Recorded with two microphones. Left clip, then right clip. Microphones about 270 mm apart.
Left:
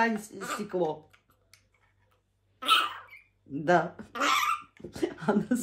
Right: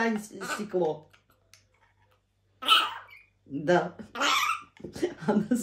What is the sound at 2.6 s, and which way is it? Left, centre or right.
Cough, centre.